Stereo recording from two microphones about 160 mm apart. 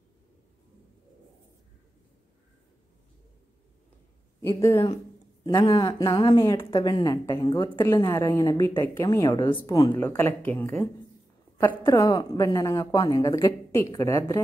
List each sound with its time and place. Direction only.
4.6 s speech: 20° left (ahead or behind)
5.5 s speech: 30° left (ahead or behind)
11.9 s speech: 25° left (ahead or behind)